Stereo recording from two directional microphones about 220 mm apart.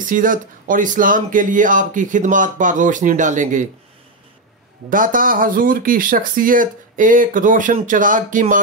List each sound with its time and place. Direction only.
0.0 s speech: 40° right (ahead or behind)
4.8 s speech: 40° right (ahead or behind)